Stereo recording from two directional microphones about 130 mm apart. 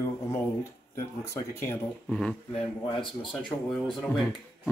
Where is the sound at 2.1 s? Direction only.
5° left (ahead or behind).